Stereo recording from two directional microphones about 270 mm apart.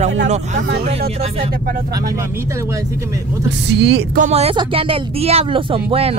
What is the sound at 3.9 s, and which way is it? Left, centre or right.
Speech, right.